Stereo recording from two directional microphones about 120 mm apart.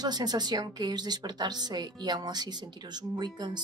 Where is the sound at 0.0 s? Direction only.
35° right (ahead or behind).